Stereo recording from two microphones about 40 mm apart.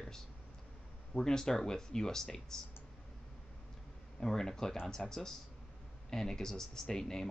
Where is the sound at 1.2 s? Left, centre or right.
Centre.